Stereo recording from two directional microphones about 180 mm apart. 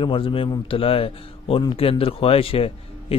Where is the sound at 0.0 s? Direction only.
30° left (ahead or behind).